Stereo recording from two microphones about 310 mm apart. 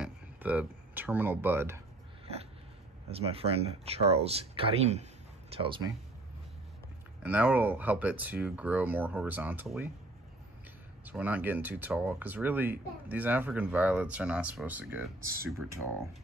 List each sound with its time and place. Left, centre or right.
0.0 s speech: centre
3.1 s speech: centre
7.2 s speech: centre
11.1 s speech: centre